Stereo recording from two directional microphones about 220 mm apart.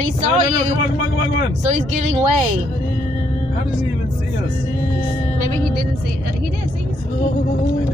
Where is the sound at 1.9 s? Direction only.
35° right (ahead or behind).